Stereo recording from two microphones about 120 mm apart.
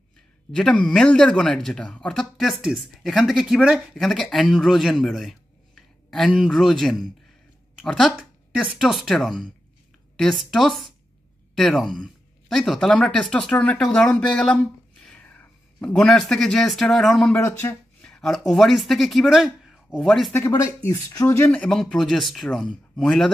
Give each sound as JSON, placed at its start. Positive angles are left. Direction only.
{"t": 0.6, "sound": "speech", "side_deg": 5}
{"t": 17.3, "sound": "speech", "side_deg": 20}
{"t": 18.0, "sound": "speech", "side_deg": 5}
{"t": 20.3, "sound": "speech", "side_deg": 25}
{"t": 21.5, "sound": "speech", "side_deg": 5}